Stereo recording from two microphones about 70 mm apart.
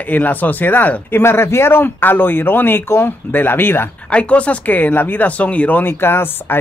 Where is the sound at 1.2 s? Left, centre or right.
Left.